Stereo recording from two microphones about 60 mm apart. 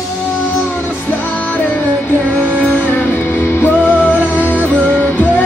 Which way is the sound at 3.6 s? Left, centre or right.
Left.